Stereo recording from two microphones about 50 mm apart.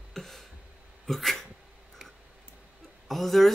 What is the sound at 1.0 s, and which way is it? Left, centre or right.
Speech, centre.